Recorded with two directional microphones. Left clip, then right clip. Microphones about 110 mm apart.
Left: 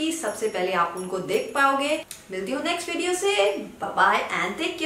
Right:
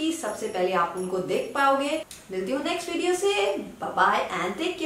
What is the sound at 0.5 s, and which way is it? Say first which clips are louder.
A woman's voice: right 2 dB; 5° left (ahead or behind).